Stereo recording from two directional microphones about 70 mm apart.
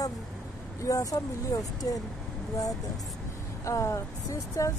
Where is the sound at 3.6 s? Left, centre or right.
Left.